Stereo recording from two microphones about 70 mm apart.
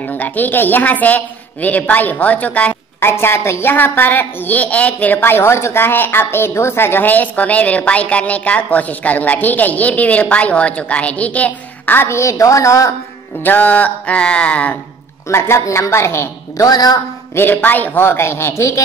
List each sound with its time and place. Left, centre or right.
0.2 s a woman's voice: left
3.0 s a woman's voice: left
12.1 s a woman's voice: left
13.4 s a woman's voice: left
15.2 s a man's voice: left
16.5 s a woman's voice: left
17.4 s a man's voice: left